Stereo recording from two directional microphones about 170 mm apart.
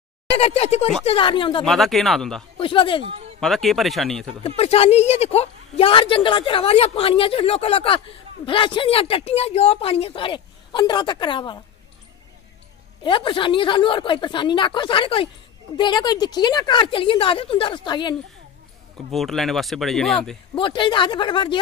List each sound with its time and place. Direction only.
0.3 s a woman's voice: 35° left (ahead or behind)
1.6 s speech: centre (ahead or behind)
2.5 s speech: 30° left (ahead or behind)
3.3 s speech: centre (ahead or behind)
4.4 s a woman's voice: 35° left (ahead or behind)
13.0 s speech: 30° left (ahead or behind)
19.1 s speech: centre (ahead or behind)
20.5 s speech: 30° left (ahead or behind)